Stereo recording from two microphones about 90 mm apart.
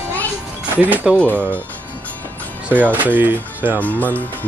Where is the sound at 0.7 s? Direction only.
20° right (ahead or behind).